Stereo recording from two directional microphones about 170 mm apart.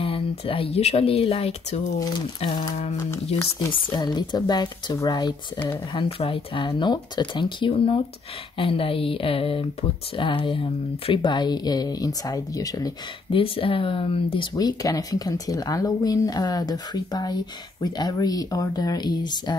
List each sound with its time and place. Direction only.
0.0 s speech: 35° left (ahead or behind)
3.3 s speech: 20° left (ahead or behind)